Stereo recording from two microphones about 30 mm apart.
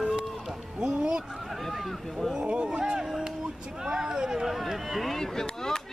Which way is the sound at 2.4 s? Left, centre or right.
Right.